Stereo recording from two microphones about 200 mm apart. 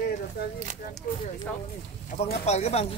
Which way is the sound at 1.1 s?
40° left (ahead or behind).